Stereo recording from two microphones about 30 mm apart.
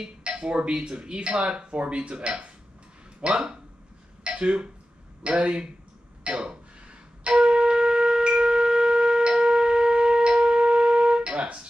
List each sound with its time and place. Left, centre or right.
0.0 s speech: right
6.2 s wind instrument: right
11.3 s music: right